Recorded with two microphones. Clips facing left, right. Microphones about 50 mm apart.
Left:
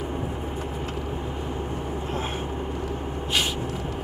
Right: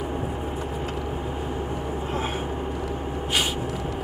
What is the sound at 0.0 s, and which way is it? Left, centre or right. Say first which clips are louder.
Vehicle: right 1 dB; centre.